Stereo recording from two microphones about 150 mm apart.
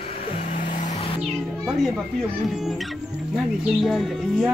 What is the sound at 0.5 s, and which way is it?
Vehicle, 60° left (ahead or behind).